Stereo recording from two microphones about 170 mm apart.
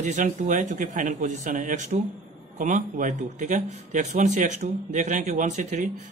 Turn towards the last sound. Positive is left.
turn(degrees=-45)  # may be behind; listen again after turning